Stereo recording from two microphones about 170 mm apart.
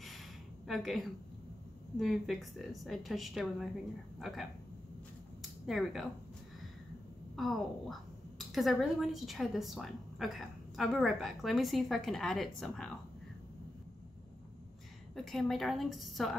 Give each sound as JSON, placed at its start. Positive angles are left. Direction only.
{"t": 0.7, "sound": "a woman's voice", "side_deg": 0}
{"t": 5.4, "sound": "a sound", "side_deg": 0}
{"t": 7.3, "sound": "a woman's voice", "side_deg": 0}
{"t": 15.1, "sound": "a woman's voice", "side_deg": 0}